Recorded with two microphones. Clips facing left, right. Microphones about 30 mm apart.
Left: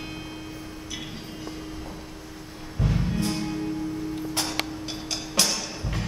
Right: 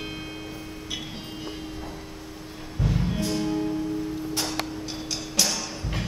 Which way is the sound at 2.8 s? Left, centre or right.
Centre.